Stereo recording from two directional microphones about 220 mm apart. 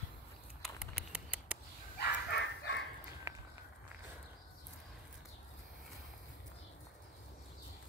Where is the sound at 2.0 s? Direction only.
50° left (ahead or behind).